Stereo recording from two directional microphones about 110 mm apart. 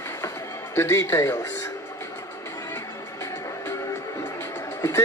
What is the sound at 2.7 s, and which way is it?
Music, 25° left (ahead or behind).